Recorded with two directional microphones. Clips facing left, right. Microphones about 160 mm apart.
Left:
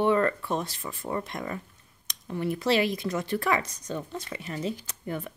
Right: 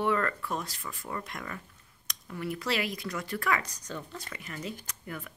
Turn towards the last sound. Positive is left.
turn(degrees=30)  # may be behind; listen again after turning